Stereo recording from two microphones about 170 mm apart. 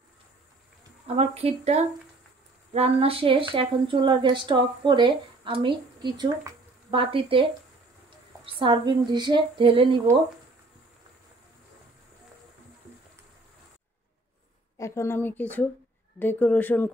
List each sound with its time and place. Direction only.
1.0 s a woman's voice: 35° right (ahead or behind)
8.5 s speech: 30° right (ahead or behind)
14.8 s a woman's voice: 15° left (ahead or behind)